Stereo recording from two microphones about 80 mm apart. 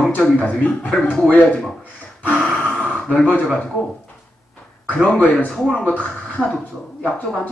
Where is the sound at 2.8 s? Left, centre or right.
Centre.